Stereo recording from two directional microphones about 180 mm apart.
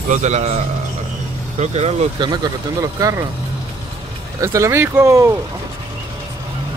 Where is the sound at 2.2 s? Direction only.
20° right (ahead or behind).